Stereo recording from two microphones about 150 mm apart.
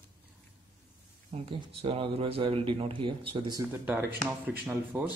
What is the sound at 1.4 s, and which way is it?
Speech, 35° right (ahead or behind).